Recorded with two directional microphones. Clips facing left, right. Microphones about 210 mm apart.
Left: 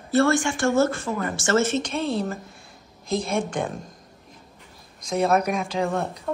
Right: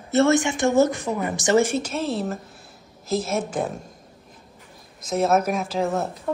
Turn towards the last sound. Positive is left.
turn(degrees=-5)  # may be behind; listen again after turning